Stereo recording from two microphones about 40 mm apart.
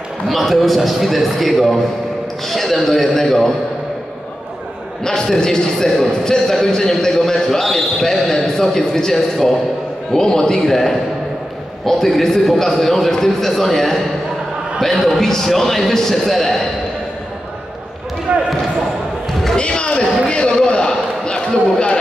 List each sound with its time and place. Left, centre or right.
0.3 s a man's voice: centre
5.0 s a man's voice: centre
18.3 s speech: right
19.5 s a sound: left